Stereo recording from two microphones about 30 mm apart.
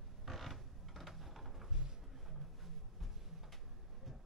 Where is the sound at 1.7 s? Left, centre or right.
Right.